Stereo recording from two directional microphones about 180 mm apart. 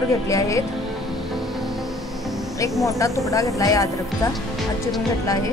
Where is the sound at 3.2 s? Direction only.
20° left (ahead or behind).